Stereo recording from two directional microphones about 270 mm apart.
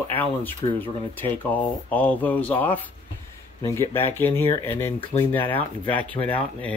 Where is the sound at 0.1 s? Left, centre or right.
Centre.